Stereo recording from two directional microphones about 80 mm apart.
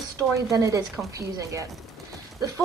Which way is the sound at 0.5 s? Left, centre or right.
Right.